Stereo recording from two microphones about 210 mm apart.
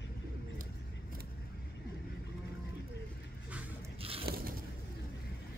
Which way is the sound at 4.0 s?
25° right (ahead or behind).